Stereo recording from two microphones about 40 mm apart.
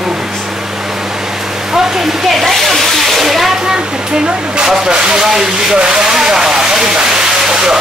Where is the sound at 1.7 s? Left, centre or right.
Centre.